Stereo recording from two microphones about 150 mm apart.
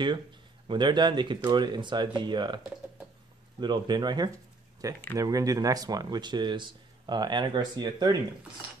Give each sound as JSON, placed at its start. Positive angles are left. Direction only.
{"t": 0.7, "sound": "speech", "side_deg": -30}